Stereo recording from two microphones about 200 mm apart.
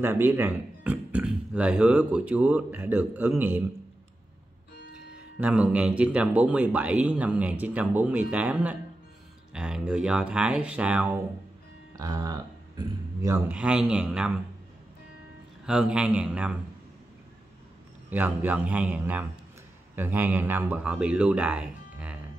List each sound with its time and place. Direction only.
0.0 s speech: 10° right (ahead or behind)
5.4 s speech: 5° right (ahead or behind)
11.9 s speech: 20° right (ahead or behind)
13.5 s speech: 5° right (ahead or behind)
15.6 s speech: 5° right (ahead or behind)
18.1 s speech: 10° right (ahead or behind)